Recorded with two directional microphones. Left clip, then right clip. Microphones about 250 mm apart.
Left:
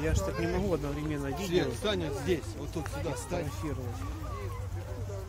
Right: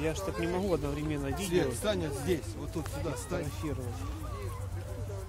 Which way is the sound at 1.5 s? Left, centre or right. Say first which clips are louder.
Even; right.